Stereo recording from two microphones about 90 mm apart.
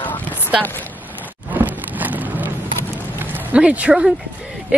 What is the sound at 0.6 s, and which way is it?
Speech, 20° left (ahead or behind).